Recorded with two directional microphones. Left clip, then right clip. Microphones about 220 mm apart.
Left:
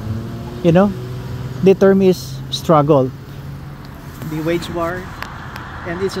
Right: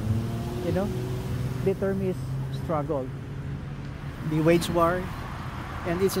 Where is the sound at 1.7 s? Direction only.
55° left (ahead or behind).